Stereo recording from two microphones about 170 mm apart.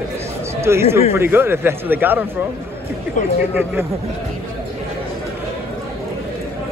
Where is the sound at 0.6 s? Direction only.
15° right (ahead or behind).